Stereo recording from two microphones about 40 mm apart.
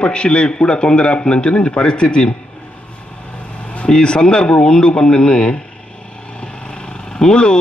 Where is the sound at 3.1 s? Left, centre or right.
Left.